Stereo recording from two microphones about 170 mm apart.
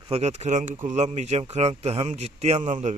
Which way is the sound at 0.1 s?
40° right (ahead or behind).